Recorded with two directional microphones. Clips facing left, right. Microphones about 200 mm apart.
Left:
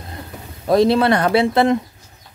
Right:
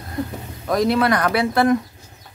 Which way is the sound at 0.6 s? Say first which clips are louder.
Left 4 dB; 30° left (ahead or behind).